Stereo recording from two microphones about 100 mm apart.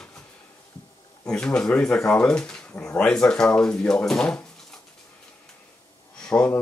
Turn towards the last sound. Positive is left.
turn(degrees=10)  # may be behind; listen again after turning